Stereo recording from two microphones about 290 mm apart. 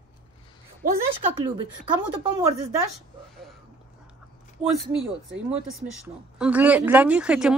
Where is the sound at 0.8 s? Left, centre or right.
Right.